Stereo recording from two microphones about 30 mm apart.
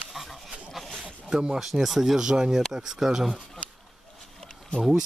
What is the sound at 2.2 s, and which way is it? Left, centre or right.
Speech, right.